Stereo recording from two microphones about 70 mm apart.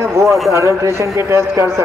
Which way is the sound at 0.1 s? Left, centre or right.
Right.